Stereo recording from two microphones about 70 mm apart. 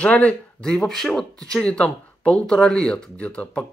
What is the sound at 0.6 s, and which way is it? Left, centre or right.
Speech, centre.